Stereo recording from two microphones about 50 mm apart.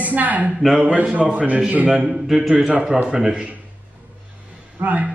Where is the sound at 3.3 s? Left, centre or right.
Right.